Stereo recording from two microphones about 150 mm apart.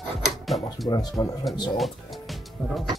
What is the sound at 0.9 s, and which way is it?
Speech, 25° left (ahead or behind).